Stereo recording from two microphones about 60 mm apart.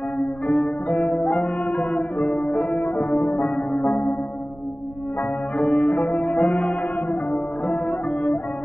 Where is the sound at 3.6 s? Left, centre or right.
Centre.